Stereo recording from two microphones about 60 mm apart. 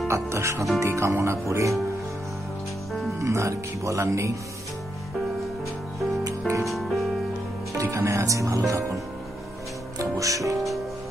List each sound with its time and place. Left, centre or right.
0.1 s speech: right
3.2 s speech: right
6.6 s music: centre
7.7 s speech: right
9.9 s music: right